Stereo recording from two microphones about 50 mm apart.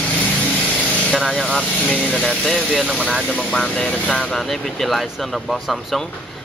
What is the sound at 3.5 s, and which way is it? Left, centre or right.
Speech, centre.